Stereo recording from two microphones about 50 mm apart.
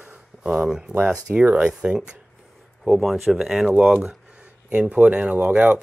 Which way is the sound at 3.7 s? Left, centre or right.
Right.